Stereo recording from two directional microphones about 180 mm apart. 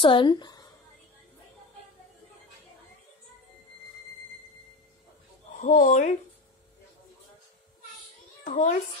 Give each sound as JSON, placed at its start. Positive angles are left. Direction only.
{"t": 0.0, "sound": "speech", "side_deg": 25}
{"t": 5.6, "sound": "speech", "side_deg": 40}
{"t": 8.5, "sound": "a child's voice", "side_deg": 45}